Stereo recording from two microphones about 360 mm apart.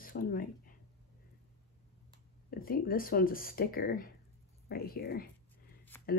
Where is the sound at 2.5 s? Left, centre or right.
Left.